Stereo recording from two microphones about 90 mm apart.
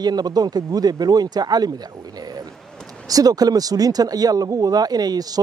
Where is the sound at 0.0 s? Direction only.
50° right (ahead or behind).